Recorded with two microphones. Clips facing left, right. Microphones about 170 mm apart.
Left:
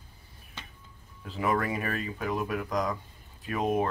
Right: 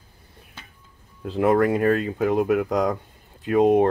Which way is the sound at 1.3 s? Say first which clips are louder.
Right 10 dB; 75° right (ahead or behind).